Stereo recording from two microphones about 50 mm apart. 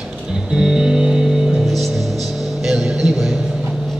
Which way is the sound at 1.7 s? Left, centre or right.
Centre.